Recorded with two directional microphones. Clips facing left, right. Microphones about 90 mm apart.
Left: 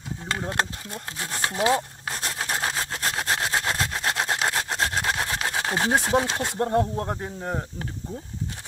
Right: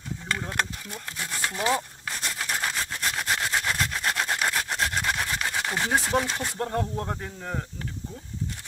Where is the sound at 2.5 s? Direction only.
25° left (ahead or behind).